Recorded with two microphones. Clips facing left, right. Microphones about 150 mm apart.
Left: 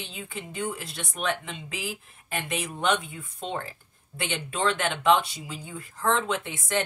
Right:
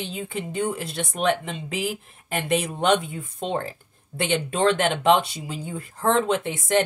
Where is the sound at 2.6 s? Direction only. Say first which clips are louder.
Right 5 dB; 35° right (ahead or behind).